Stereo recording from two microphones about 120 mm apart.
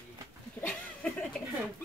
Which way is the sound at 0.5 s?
10° left (ahead or behind).